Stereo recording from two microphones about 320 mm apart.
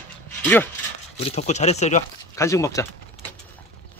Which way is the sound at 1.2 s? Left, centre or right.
Centre.